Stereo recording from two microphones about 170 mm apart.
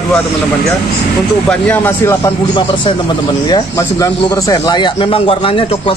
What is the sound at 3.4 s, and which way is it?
Speech, 20° left (ahead or behind).